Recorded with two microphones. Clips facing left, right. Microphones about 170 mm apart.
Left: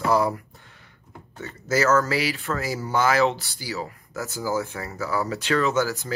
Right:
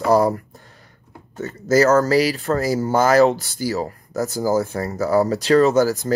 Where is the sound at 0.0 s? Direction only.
40° right (ahead or behind).